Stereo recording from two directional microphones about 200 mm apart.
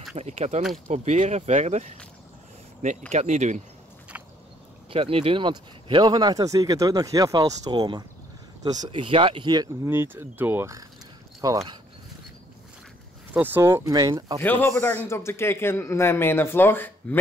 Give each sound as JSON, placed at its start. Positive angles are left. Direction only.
{"t": 0.1, "sound": "speech", "side_deg": -35}
{"t": 3.1, "sound": "speech", "side_deg": -35}
{"t": 4.1, "sound": "a sound", "side_deg": -10}
{"t": 4.8, "sound": "speech", "side_deg": -30}
{"t": 13.3, "sound": "speech", "side_deg": -10}
{"t": 14.4, "sound": "speech", "side_deg": 10}